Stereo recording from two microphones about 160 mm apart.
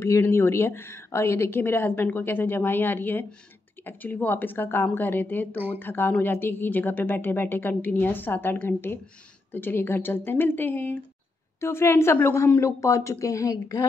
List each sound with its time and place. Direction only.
0.0 s speech: 15° left (ahead or behind)